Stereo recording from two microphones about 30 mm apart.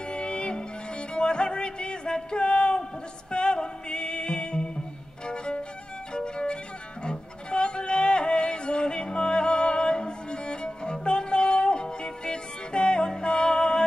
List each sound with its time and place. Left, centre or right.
0.1 s music: left
2.3 s a sound: left
3.3 s music: left
5.2 s violin: left
7.1 s music: left